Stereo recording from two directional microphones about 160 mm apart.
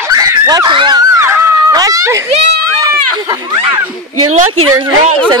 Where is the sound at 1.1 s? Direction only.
15° right (ahead or behind).